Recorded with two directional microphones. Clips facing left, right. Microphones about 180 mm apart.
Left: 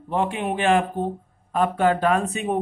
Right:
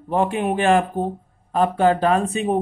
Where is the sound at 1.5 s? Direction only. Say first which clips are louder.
Right 3 dB; 30° right (ahead or behind).